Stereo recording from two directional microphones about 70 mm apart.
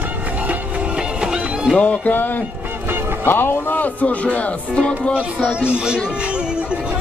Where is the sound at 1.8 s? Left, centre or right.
Left.